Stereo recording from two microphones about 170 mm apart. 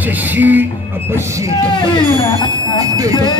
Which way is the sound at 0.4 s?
10° right (ahead or behind).